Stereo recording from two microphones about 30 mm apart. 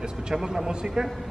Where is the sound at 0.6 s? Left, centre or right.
Centre.